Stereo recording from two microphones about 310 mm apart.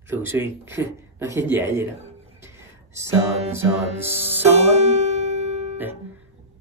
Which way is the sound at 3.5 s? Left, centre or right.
Centre.